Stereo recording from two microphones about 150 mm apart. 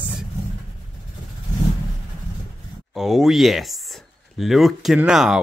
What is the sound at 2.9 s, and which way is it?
Speech, centre (ahead or behind).